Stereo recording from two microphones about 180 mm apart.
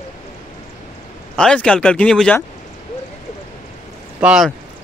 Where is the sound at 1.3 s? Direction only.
5° left (ahead or behind).